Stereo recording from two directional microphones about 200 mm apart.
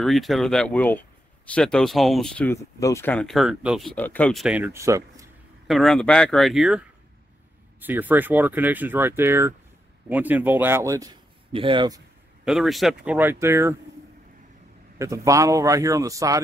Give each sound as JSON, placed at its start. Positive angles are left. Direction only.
{"t": 0.0, "sound": "speech", "side_deg": 0}
{"t": 5.7, "sound": "speech", "side_deg": 0}
{"t": 7.8, "sound": "speech", "side_deg": -10}
{"t": 12.4, "sound": "speech", "side_deg": 0}
{"t": 15.0, "sound": "speech", "side_deg": -15}